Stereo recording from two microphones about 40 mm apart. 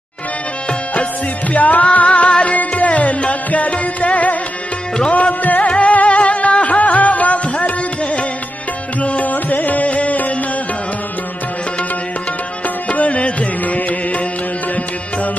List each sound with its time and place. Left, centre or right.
1.5 s music: left
12.6 s music: left